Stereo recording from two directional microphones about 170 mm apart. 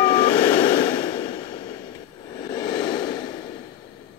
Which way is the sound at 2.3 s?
25° left (ahead or behind).